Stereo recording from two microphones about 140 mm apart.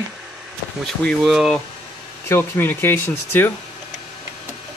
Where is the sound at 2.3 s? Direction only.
15° left (ahead or behind).